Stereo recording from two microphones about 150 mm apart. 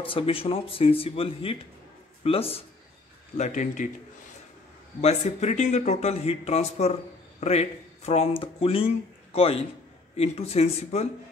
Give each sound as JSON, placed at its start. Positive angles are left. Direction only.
{"t": 0.0, "sound": "speech", "side_deg": 35}
{"t": 3.3, "sound": "speech", "side_deg": 55}
{"t": 5.0, "sound": "speech", "side_deg": 50}